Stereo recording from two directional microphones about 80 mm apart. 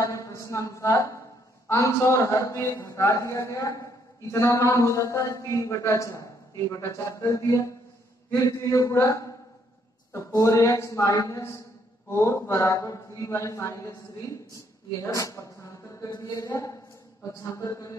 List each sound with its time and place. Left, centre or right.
0.1 s a man's voice: left
10.3 s a man's voice: left